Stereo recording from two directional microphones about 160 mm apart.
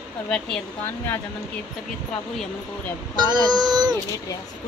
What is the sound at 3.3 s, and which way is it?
Speech, 25° right (ahead or behind).